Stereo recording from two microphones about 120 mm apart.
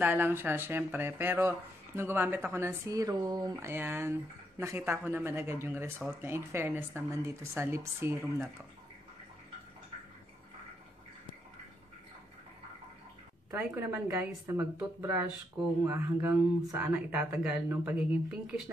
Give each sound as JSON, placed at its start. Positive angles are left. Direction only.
{"t": 0.0, "sound": "speech", "side_deg": -15}
{"t": 3.5, "sound": "speech", "side_deg": -20}
{"t": 13.6, "sound": "speech", "side_deg": -15}